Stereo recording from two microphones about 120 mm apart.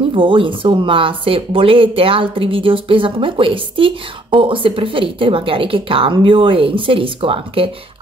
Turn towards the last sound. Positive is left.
turn(degrees=-50)  # may be behind; listen again after turning